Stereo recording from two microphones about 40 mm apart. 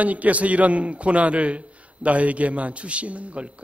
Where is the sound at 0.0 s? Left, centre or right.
Right.